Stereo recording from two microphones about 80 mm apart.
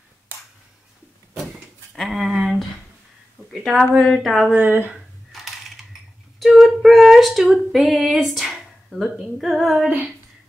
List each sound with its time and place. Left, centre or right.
2.0 s speech: centre
3.6 s a woman's voice: centre
4.5 s speech: right
4.9 s coin: centre
6.4 s a sound: centre